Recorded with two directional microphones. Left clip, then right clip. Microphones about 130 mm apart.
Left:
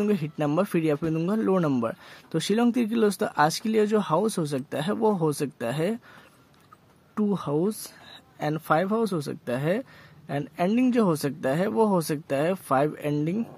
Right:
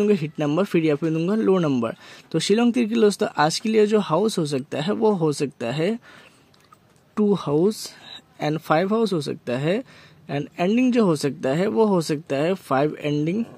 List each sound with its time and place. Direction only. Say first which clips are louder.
0.0 s speech: right 5 dB; 30° right (ahead or behind)
7.2 s speech: right 6 dB; 40° right (ahead or behind)